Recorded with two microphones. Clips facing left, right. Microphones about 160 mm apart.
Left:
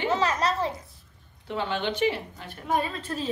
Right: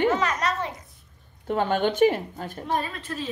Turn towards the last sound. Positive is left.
turn(degrees=30)  # may be behind; listen again after turning